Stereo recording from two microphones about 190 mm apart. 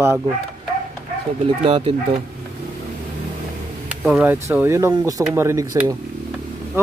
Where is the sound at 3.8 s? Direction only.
5° right (ahead or behind).